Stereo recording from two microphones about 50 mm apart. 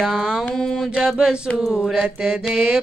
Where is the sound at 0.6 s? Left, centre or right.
Centre.